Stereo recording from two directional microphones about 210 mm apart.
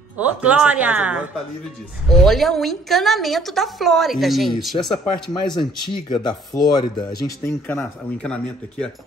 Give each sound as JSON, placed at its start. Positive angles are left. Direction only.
{"t": 0.2, "sound": "a woman's voice", "side_deg": -5}
{"t": 5.3, "sound": "speech", "side_deg": 20}